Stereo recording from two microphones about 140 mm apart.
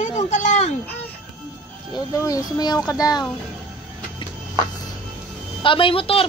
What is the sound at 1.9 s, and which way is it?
Speech, 25° left (ahead or behind).